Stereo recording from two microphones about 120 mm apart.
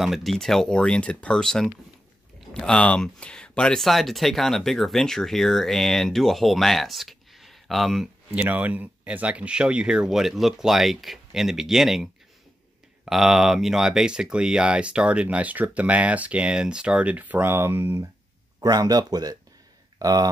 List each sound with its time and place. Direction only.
0.0 s speech: centre (ahead or behind)
8.3 s speech: 15° right (ahead or behind)
18.6 s speech: 30° right (ahead or behind)